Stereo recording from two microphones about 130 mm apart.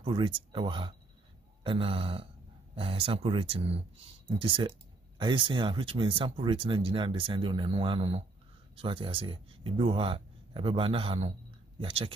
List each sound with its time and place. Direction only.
0.0 s speech: 40° right (ahead or behind)